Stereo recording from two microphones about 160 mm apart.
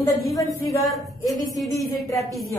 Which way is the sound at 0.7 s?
Centre (ahead or behind).